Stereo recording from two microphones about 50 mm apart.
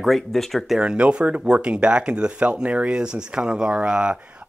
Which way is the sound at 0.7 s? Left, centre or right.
Right.